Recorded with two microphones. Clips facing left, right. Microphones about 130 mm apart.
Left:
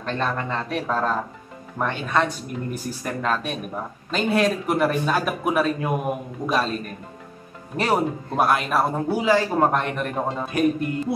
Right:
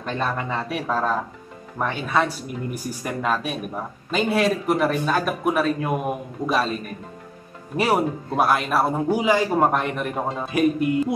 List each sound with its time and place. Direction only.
0.0 s speech: 5° right (ahead or behind)
7.7 s speech: 5° right (ahead or behind)
9.1 s speech: 15° right (ahead or behind)
9.7 s speech: 5° right (ahead or behind)